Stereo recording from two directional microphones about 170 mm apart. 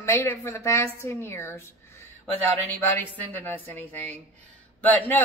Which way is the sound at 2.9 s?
10° left (ahead or behind).